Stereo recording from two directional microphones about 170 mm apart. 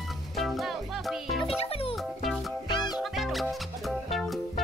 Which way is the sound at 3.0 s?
Centre (ahead or behind).